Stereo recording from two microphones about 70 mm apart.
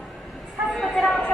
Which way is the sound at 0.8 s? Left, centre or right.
Centre.